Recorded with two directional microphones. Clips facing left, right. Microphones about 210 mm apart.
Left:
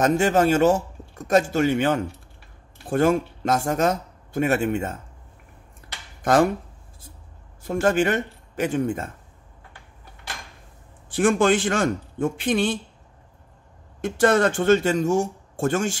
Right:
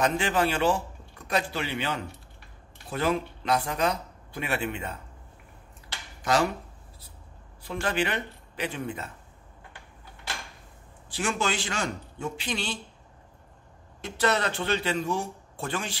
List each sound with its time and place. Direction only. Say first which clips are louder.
0.0 s speech: left 7 dB; 45° left (ahead or behind)
6.2 s speech: left 7 dB; 50° left (ahead or behind)
7.6 s speech: left 8 dB; 45° left (ahead or behind)
11.1 s speech: left 11 dB; 50° left (ahead or behind)
14.0 s speech: left 8 dB; 50° left (ahead or behind)